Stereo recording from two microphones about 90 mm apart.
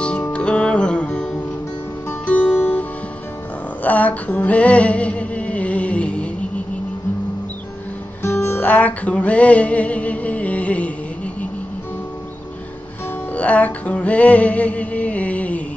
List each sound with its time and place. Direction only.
0.3 s music: 15° left (ahead or behind)
3.8 s female singing: 15° left (ahead or behind)
8.2 s music: 25° left (ahead or behind)
13.3 s music: 15° left (ahead or behind)